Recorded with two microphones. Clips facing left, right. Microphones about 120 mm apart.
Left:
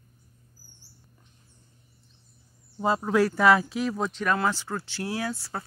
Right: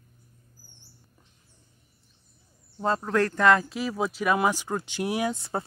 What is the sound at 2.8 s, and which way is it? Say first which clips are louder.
Speech: left 2 dB; 5° left (ahead or behind).